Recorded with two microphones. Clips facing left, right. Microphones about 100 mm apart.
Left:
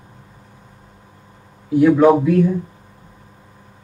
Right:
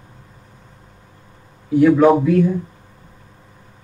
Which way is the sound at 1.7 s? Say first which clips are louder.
Even; 5° left (ahead or behind).